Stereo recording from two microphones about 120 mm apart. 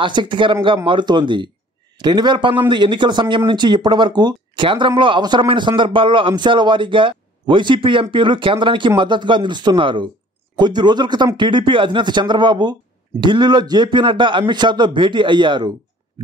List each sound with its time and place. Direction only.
0.0 s a man's voice: 40° right (ahead or behind)